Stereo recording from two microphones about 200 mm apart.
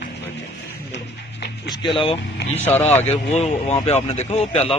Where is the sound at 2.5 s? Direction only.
10° left (ahead or behind).